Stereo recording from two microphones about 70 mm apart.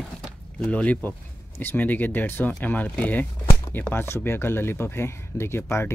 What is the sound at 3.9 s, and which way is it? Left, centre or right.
Speech, left.